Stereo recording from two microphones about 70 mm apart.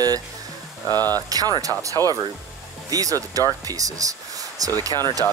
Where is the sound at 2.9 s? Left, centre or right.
Right.